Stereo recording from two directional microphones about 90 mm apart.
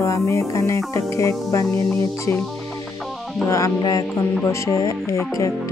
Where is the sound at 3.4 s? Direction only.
35° left (ahead or behind).